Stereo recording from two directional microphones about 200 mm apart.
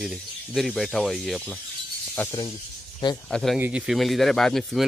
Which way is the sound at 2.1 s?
20° left (ahead or behind).